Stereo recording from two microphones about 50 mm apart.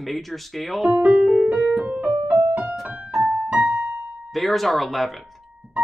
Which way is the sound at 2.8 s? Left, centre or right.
Right.